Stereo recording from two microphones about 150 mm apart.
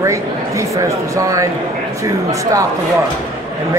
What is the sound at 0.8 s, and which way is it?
Speech, 20° right (ahead or behind).